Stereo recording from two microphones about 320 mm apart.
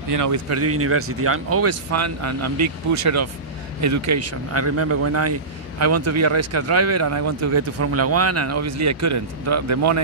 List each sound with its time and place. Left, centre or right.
0.1 s speech: right